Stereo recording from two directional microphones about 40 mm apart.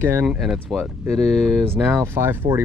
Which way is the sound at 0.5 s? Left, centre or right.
Centre.